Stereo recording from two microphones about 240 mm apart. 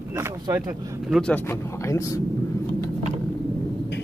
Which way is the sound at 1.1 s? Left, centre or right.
Centre.